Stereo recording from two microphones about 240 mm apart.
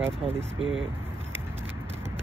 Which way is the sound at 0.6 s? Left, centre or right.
Right.